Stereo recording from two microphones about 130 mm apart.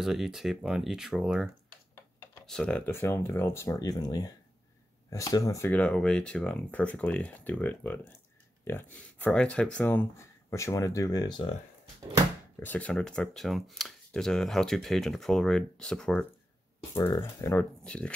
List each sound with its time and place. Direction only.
0.0 s speech: 5° right (ahead or behind)
2.8 s speech: 20° left (ahead or behind)
5.7 s speech: 10° left (ahead or behind); by 11.4 s 30° left (ahead or behind)
12.5 s speech: 10° left (ahead or behind)
16.9 s speech: 25° left (ahead or behind)
17.8 s speech: 10° left (ahead or behind)